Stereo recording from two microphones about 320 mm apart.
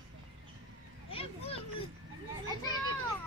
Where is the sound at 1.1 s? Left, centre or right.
Centre.